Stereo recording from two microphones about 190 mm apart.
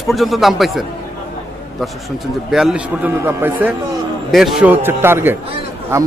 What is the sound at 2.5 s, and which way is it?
A man's voice, 5° right (ahead or behind).